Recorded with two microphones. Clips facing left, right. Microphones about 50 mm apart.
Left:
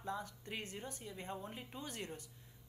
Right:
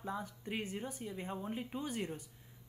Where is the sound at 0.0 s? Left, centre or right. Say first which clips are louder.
Right 2 dB; centre.